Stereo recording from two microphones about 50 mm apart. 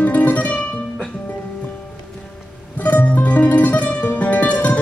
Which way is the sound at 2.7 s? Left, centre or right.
Left.